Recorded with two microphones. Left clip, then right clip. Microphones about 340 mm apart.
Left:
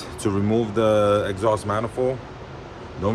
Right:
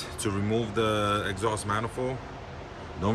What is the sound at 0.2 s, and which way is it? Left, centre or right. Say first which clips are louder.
Speech: left 7 dB; centre.